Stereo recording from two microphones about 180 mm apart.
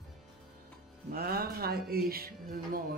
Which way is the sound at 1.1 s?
55° right (ahead or behind).